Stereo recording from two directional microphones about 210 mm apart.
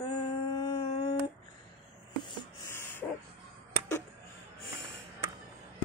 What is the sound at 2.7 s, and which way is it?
Dog, 10° left (ahead or behind).